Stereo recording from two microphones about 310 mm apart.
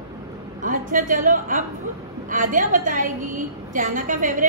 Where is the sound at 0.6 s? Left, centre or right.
Right.